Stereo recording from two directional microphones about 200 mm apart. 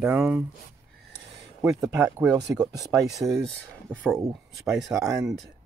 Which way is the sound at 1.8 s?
15° right (ahead or behind).